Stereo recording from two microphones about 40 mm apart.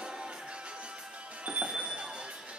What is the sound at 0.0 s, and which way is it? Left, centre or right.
Music, right.